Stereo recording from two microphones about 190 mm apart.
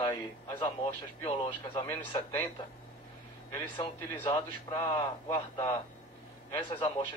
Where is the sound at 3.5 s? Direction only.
25° left (ahead or behind).